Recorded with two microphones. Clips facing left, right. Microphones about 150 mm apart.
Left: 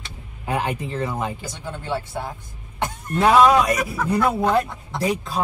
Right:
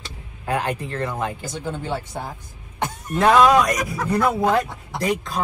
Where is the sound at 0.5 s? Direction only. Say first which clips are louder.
Even; 10° left (ahead or behind).